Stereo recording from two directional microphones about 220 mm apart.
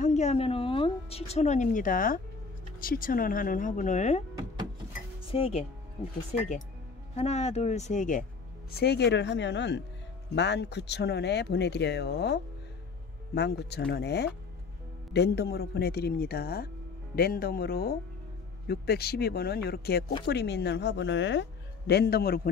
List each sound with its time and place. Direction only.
0.0 s speech: 30° left (ahead or behind)
5.3 s speech: 25° left (ahead or behind)
8.7 s speech: 50° left (ahead or behind)